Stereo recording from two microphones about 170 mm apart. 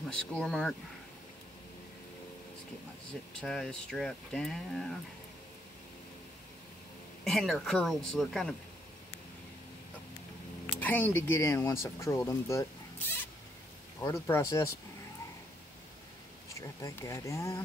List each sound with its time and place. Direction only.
0.0 s speech: 5° left (ahead or behind)
3.3 s speech: 5° left (ahead or behind)
7.2 s speech: centre (ahead or behind)
10.8 s speech: 10° left (ahead or behind)
14.0 s speech: 15° left (ahead or behind)
16.5 s speech: 20° left (ahead or behind)